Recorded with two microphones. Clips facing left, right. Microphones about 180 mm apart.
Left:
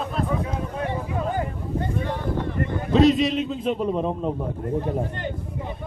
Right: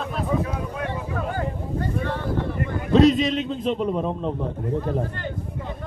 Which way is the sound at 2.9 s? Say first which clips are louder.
Right 1 dB; centre (ahead or behind).